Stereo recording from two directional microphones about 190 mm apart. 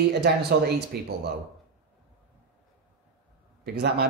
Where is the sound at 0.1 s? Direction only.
60° right (ahead or behind).